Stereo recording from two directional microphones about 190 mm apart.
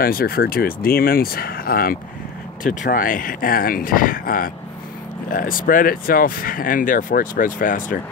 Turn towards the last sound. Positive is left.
turn(degrees=45)  # may be behind; listen again after turning